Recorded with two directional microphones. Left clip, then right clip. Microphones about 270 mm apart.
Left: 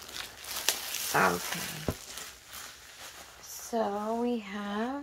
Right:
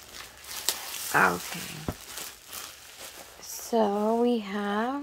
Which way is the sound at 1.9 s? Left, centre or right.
Centre.